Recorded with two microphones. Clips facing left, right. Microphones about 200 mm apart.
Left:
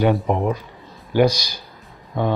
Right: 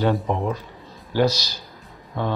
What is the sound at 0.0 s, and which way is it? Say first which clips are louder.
Speech: left 3 dB; 15° left (ahead or behind).